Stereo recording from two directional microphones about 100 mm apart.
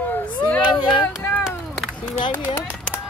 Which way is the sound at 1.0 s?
15° left (ahead or behind).